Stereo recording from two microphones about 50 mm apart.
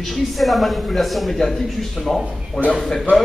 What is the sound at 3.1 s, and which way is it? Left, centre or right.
Speech, right.